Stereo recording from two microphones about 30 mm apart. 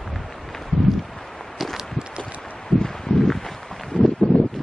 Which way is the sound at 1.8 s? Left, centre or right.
Right.